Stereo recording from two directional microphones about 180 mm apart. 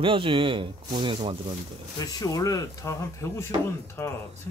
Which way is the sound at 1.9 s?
20° left (ahead or behind).